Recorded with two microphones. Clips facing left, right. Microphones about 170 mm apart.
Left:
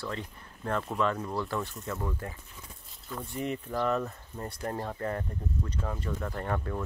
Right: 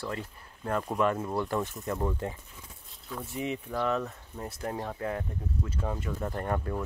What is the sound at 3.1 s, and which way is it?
Speech, centre (ahead or behind).